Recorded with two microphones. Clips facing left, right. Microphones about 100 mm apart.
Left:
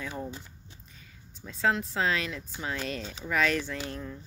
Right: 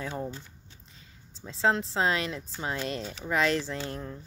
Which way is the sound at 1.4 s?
25° right (ahead or behind).